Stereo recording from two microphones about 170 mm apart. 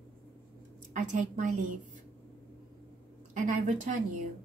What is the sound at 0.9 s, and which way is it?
Speech, 45° right (ahead or behind).